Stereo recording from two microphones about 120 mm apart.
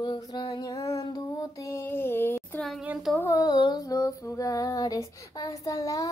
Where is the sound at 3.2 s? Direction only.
30° left (ahead or behind).